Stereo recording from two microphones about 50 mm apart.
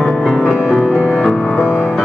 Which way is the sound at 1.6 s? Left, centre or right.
Right.